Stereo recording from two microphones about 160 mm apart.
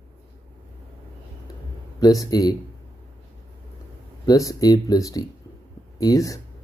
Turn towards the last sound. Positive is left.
turn(degrees=20)  # may be behind; listen again after turning